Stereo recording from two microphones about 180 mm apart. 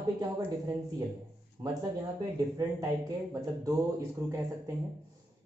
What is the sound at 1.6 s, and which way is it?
Speech, 20° right (ahead or behind).